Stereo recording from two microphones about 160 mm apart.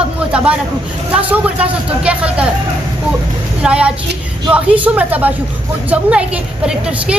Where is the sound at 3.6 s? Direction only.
5° right (ahead or behind).